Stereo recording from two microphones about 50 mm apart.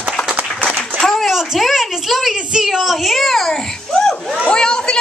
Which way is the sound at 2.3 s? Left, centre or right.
Centre.